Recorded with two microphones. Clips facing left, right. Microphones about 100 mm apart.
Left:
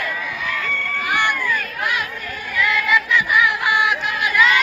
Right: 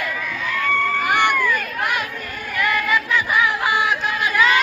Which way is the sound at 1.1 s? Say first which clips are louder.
Right 1 dB; 55° right (ahead or behind).